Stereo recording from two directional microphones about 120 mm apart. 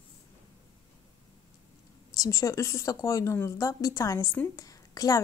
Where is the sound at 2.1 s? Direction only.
30° left (ahead or behind).